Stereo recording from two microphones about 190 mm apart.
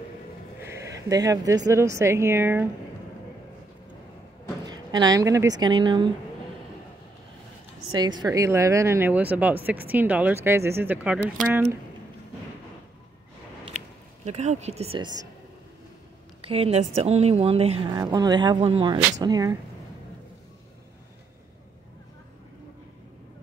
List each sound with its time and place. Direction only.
0.6 s a woman's voice: 15° right (ahead or behind)
4.6 s speech: 20° right (ahead or behind)
7.9 s a woman's voice: 20° right (ahead or behind)
13.7 s speech: 35° right (ahead or behind)
16.3 s speech: 30° right (ahead or behind)
18.0 s speech: 20° right (ahead or behind)